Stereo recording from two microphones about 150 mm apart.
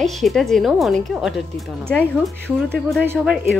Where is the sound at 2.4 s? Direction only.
5° left (ahead or behind).